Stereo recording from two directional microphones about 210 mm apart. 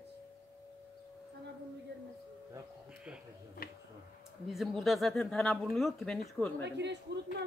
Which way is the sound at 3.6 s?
45° left (ahead or behind).